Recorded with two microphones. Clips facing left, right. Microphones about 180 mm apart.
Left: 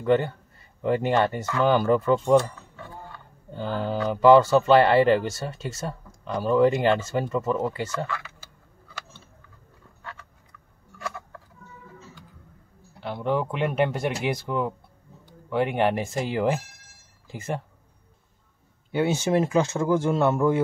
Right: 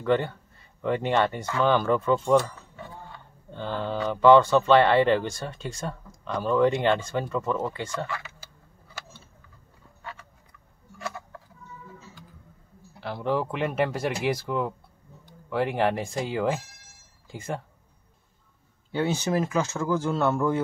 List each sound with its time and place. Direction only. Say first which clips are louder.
0.8 s speech: left 2 dB; 5° left (ahead or behind)
3.5 s speech: left 2 dB; 5° left (ahead or behind)
13.0 s speech: left 1 dB; centre (ahead or behind)
18.9 s speech: left 3 dB; 10° left (ahead or behind)
19.1 s speech: left 4 dB; 25° left (ahead or behind)